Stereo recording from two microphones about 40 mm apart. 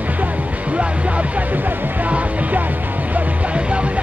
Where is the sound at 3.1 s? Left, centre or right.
Right.